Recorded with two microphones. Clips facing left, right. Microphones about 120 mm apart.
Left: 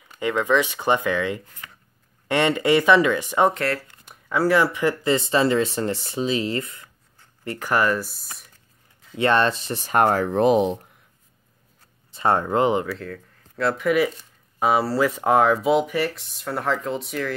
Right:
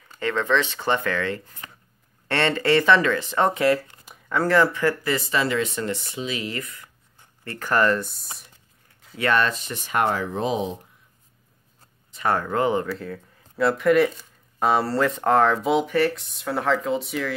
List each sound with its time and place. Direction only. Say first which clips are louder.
0.2 s speech: left 2 dB; 15° left (ahead or behind)
3.5 s speech: right 5 dB; 10° right (ahead or behind)
4.0 s speech: left 2 dB; 5° left (ahead or behind); by 6.9 s 25° left (ahead or behind)
7.4 s speech: even; 15° left (ahead or behind)
9.1 s speech: left 3 dB; 25° left (ahead or behind); by 10.8 s 60° left (ahead or behind)
12.1 s speech: left 3 dB; 25° left (ahead or behind)
12.8 s speech: even; 5° right (ahead or behind)